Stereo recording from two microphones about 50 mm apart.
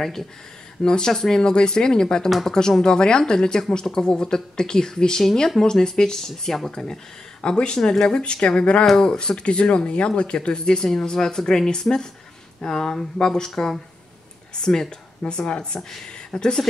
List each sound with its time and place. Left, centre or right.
0.0 s speech: centre